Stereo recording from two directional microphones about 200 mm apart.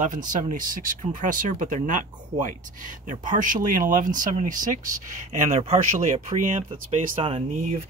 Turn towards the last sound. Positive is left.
turn(degrees=-35)  # may be behind; listen again after turning